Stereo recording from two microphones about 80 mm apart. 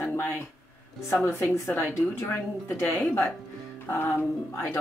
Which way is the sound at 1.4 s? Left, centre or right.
Left.